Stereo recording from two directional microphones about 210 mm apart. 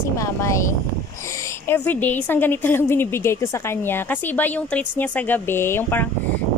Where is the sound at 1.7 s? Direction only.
10° left (ahead or behind).